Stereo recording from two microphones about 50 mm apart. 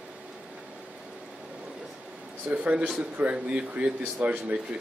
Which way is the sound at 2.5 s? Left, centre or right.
Right.